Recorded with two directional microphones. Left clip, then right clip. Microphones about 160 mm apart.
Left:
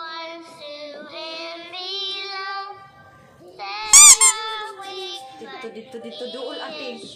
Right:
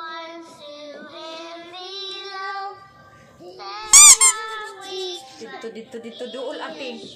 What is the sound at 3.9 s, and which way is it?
Squeak, centre (ahead or behind).